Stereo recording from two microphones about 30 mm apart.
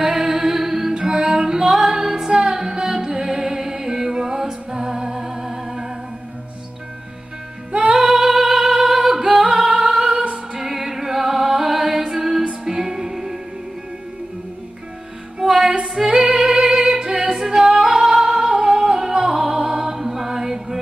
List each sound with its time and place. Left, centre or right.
0.0 s music: centre
0.9 s music: right
7.9 s singing: centre
10.6 s music: centre
15.9 s music: centre